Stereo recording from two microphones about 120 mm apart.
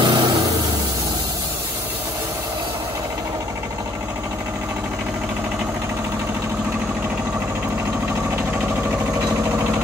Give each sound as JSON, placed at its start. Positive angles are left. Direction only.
{"t": 0.0, "sound": "vehicle", "side_deg": -40}